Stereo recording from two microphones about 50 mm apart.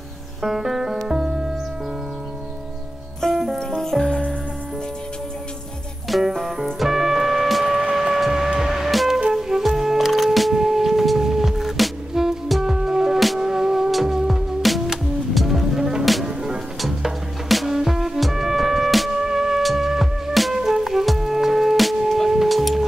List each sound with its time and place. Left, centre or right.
0.4 s music: centre
3.2 s music: centre
6.0 s music: centre